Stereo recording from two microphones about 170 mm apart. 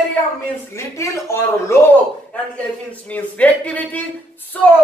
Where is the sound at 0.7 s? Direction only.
15° left (ahead or behind).